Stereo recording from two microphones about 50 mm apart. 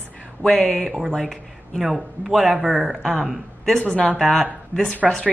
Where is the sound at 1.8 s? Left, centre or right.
Centre.